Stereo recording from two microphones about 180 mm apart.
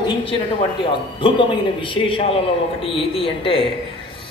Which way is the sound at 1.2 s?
30° left (ahead or behind).